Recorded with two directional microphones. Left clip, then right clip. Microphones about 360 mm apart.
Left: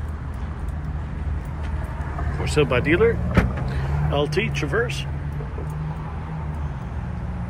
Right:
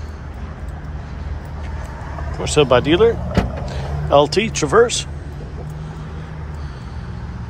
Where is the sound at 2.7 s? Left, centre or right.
Right.